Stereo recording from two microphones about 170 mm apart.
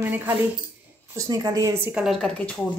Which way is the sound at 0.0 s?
10° right (ahead or behind).